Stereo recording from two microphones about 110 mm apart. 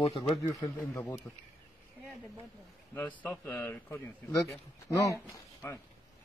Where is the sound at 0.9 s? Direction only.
25° left (ahead or behind).